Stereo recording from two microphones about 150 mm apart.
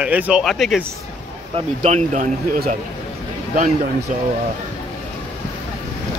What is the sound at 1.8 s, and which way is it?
Speech, 50° right (ahead or behind).